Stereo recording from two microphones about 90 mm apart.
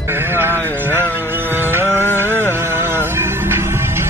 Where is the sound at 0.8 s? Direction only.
25° right (ahead or behind).